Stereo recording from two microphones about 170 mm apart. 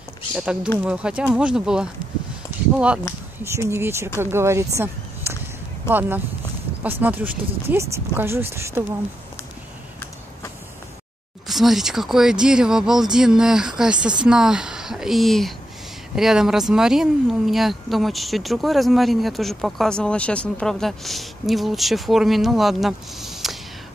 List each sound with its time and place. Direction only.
0.8 s speech: 5° right (ahead or behind)
3.5 s speech: 15° right (ahead or behind)
5.2 s a sound: 15° right (ahead or behind)
5.9 s speech: 10° right (ahead or behind)
11.4 s speech: centre (ahead or behind)